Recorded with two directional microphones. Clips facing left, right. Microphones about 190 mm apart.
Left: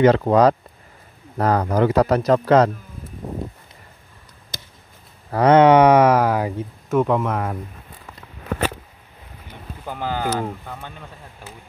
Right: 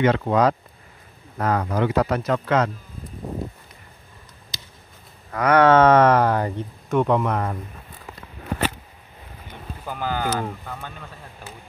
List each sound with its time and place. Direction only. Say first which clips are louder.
0.0 s speech: left 5 dB; 35° left (ahead or behind)
4.5 s a sound: left 6 dB; 50° left (ahead or behind)
5.3 s speech: left 5 dB; 30° left (ahead or behind)
5.6 s speech: left 1 dB; 15° left (ahead or behind)
9.8 s speech: left 1 dB; 25° left (ahead or behind)
10.3 s speech: left 2 dB; 10° left (ahead or behind)